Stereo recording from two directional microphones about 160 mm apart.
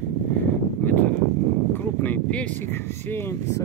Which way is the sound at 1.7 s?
10° left (ahead or behind).